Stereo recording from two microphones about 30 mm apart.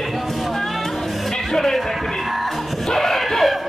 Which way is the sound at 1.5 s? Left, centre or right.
Centre.